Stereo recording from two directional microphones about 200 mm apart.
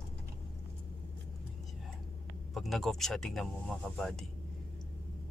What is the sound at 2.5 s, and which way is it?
Speech, centre (ahead or behind).